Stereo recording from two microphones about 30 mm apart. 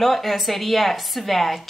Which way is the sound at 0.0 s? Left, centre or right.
Centre.